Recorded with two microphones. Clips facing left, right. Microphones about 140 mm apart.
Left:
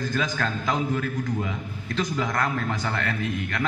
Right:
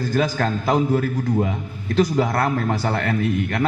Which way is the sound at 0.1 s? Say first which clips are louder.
Right 6 dB; 40° right (ahead or behind).